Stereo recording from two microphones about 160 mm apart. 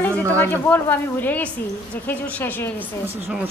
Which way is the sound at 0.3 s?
10° left (ahead or behind).